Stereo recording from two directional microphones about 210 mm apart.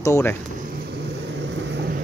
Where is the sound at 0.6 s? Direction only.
45° right (ahead or behind).